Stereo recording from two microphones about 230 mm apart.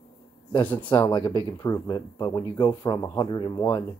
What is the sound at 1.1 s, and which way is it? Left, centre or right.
Speech, centre.